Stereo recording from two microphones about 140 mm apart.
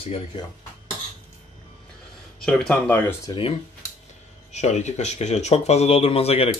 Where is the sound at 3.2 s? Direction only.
35° left (ahead or behind).